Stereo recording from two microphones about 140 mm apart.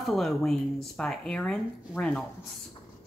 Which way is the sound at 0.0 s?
Centre (ahead or behind).